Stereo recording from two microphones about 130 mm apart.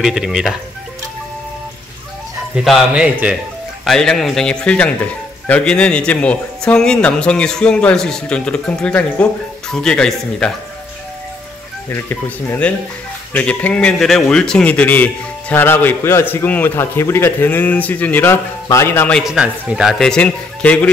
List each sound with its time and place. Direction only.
0.0 s a man's voice: 5° right (ahead or behind)
2.5 s speech: 5° right (ahead or behind)
3.8 s a man's voice: 5° left (ahead or behind)
11.9 s a man's voice: 20° left (ahead or behind)
19.1 s a man's voice: 5° right (ahead or behind)